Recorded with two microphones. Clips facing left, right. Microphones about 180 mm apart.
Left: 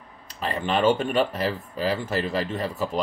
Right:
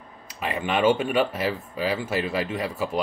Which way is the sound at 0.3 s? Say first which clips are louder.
Left 1 dB; 10° right (ahead or behind).